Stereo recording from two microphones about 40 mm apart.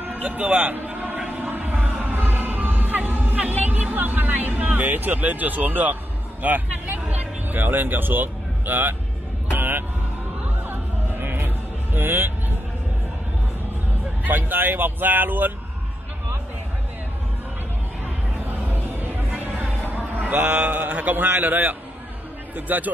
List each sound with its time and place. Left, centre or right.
0.0 s a man's voice: right
0.8 s a sound: right
1.3 s music: right
2.1 s music: right
3.9 s a sound: right
6.4 s music: right
14.2 s speech: right
19.3 s music: right
20.2 s a man's voice: right